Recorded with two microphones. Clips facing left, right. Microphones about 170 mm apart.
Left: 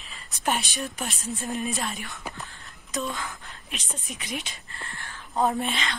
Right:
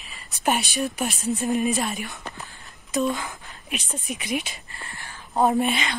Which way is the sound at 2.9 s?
20° right (ahead or behind).